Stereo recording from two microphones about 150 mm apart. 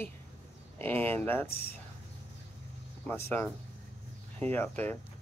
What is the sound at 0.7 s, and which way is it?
Speech, 15° left (ahead or behind).